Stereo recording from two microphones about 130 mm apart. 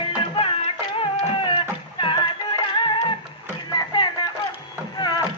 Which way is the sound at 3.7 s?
35° left (ahead or behind).